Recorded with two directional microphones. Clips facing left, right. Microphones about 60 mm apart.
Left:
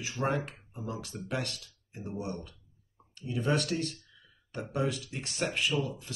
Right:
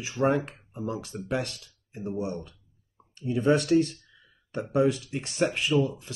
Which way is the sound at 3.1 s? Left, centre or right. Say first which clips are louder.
Right 7 dB; right.